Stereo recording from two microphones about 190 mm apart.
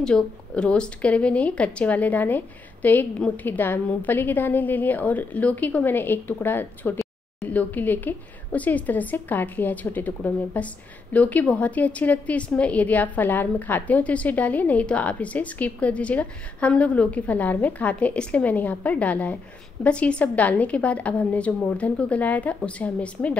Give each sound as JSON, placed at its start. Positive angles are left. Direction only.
{"t": 0.0, "sound": "a woman's voice", "side_deg": 5}